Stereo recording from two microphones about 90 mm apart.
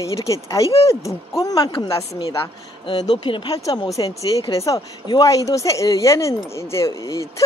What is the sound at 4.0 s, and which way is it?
Speech, 55° left (ahead or behind).